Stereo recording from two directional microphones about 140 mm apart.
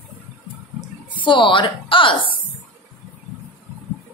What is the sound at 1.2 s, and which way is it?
Speech, 35° left (ahead or behind).